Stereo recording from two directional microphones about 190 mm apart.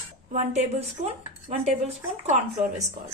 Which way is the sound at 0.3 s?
35° right (ahead or behind).